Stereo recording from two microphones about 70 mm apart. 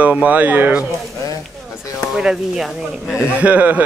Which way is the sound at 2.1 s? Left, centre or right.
Centre.